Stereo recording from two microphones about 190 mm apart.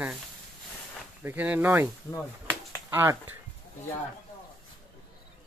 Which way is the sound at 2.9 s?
10° right (ahead or behind).